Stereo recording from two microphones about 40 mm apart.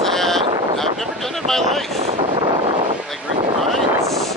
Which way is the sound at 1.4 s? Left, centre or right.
Centre.